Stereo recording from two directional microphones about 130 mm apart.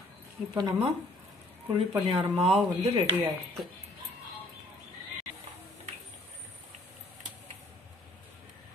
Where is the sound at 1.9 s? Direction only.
40° right (ahead or behind).